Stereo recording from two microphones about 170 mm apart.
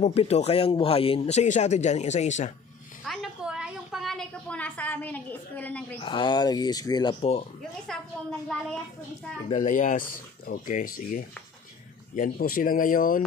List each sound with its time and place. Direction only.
0.0 s speech: 35° left (ahead or behind)
3.1 s a woman's voice: 5° right (ahead or behind)
5.9 s speech: 30° left (ahead or behind)
7.2 s speech: 35° left (ahead or behind)
7.9 s a woman's voice: 5° left (ahead or behind)
9.5 s speech: 45° left (ahead or behind)